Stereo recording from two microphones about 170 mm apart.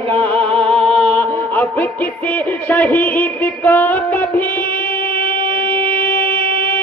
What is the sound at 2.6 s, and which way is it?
Music, 10° left (ahead or behind).